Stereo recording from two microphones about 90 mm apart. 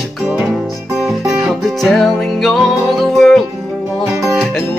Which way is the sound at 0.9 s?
5° right (ahead or behind).